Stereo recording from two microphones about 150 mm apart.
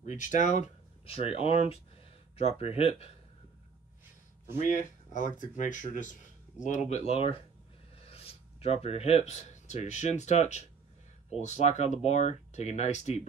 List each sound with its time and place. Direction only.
0.0 s speech: 55° left (ahead or behind); by 3.1 s 40° left (ahead or behind)
4.6 s speech: 55° left (ahead or behind)